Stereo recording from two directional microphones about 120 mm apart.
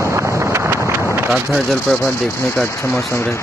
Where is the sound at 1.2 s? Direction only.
5° right (ahead or behind).